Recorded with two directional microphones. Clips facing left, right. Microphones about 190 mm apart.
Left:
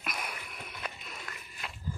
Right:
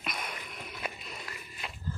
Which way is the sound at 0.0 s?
5° left (ahead or behind).